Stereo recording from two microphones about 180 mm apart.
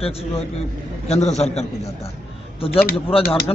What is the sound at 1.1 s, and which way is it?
Speech, 35° left (ahead or behind).